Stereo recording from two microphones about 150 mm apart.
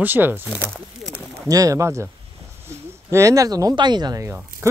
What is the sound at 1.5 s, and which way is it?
Speech, 20° right (ahead or behind).